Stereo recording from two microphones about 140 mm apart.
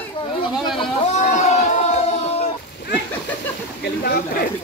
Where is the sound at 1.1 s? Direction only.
55° left (ahead or behind).